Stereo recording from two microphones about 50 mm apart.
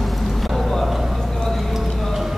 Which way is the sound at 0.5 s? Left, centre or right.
Centre.